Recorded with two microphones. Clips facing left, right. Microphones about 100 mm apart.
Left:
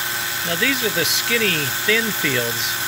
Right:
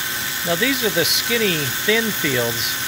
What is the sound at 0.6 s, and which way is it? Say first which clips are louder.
Speech: right 1 dB; 15° right (ahead or behind).